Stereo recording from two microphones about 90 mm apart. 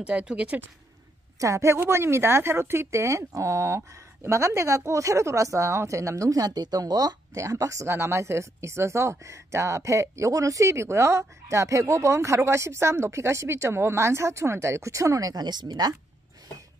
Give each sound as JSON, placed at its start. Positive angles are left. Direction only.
{"t": 0.0, "sound": "speech", "side_deg": -10}
{"t": 1.4, "sound": "speech", "side_deg": -35}
{"t": 7.3, "sound": "speech", "side_deg": -35}